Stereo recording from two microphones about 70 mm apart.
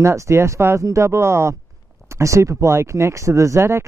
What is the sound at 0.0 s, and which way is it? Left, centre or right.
Speech, right.